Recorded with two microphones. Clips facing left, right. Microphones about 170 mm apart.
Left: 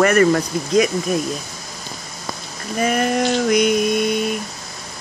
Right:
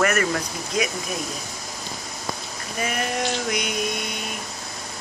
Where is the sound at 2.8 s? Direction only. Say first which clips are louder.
Left 8 dB; 45° left (ahead or behind).